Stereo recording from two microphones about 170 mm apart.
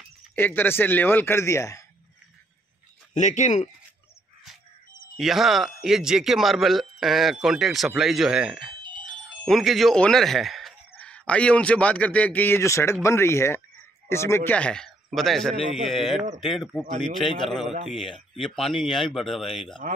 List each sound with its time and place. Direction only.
0.4 s speech: 10° left (ahead or behind)
3.2 s speech: 45° left (ahead or behind)
5.1 s speech: centre (ahead or behind)